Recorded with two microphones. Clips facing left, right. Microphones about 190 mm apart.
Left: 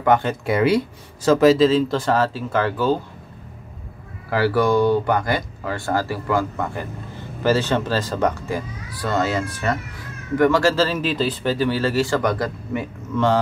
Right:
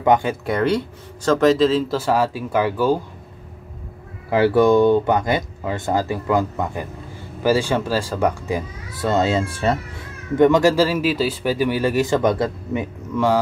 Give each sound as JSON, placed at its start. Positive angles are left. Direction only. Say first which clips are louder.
{"t": 0.0, "sound": "speech", "louder": "right 1 dB", "side_deg": -15}
{"t": 0.5, "sound": "speech", "louder": "left 2 dB", "side_deg": 5}
{"t": 4.3, "sound": "speech", "louder": "right 4 dB", "side_deg": -20}
{"t": 13.1, "sound": "speech", "louder": "even", "side_deg": -10}